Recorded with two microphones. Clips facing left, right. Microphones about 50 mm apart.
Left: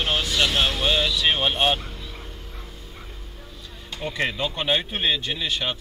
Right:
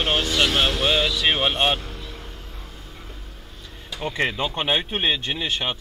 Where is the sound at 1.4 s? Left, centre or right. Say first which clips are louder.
Right 1 dB; centre.